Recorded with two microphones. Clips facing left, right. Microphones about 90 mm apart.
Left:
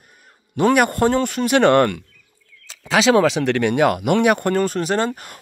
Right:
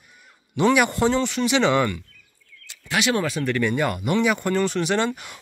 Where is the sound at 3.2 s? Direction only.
90° left.